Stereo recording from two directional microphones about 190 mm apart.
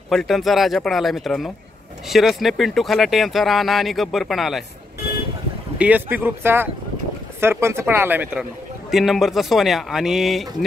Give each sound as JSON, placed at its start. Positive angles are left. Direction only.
{"t": 0.1, "sound": "speech", "side_deg": 0}
{"t": 5.8, "sound": "speech", "side_deg": -10}